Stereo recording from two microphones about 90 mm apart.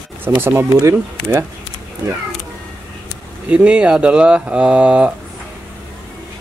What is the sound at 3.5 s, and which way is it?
Speech, 15° right (ahead or behind).